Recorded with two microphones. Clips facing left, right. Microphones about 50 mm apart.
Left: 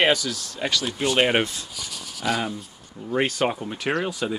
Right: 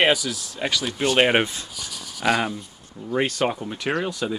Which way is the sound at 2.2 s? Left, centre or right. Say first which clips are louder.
Right 4 dB; right.